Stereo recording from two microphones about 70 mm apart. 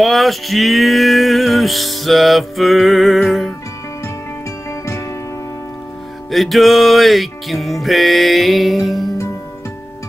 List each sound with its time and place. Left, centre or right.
0.0 s music: centre
4.6 s music: left
6.3 s music: centre